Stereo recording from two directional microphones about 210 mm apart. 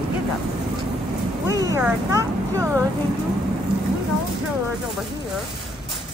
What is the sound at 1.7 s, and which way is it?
Speech, 15° right (ahead or behind).